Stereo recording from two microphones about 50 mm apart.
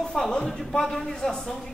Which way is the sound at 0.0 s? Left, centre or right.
Centre.